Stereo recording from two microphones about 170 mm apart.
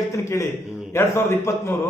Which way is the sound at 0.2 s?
15° left (ahead or behind).